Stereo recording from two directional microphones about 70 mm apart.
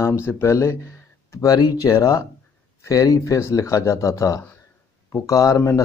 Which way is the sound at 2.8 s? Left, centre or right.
Left.